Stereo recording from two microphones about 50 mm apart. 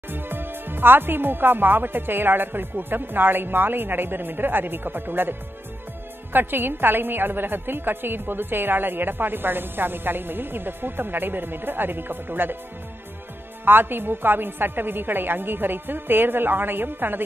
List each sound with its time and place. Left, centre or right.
0.1 s a woman's voice: right
6.3 s a woman's voice: right
13.7 s a woman's voice: right